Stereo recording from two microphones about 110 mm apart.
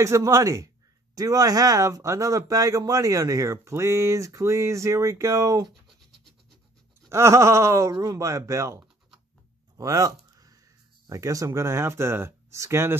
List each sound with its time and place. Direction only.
0.0 s speech: 30° right (ahead or behind)
7.1 s speech: 25° right (ahead or behind)
9.8 s a sound: 35° right (ahead or behind)
11.1 s speech: 30° right (ahead or behind)